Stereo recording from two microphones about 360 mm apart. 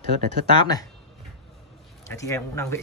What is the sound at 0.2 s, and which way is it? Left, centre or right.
Speech, right.